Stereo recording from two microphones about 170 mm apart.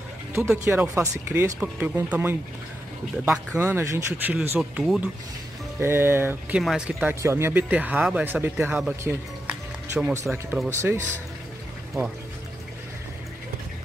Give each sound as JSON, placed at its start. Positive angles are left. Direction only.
{"t": 0.3, "sound": "speech", "side_deg": -15}
{"t": 4.4, "sound": "speech", "side_deg": -5}
{"t": 5.8, "sound": "speech", "side_deg": -15}
{"t": 6.6, "sound": "speech", "side_deg": 0}
{"t": 7.2, "sound": "speech", "side_deg": -15}
{"t": 9.0, "sound": "music", "side_deg": -5}
{"t": 10.7, "sound": "speech", "side_deg": -15}